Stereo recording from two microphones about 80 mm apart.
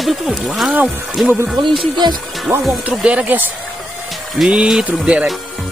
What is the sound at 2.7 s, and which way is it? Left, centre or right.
Speech, centre.